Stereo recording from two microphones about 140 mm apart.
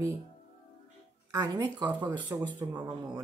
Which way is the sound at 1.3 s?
30° right (ahead or behind).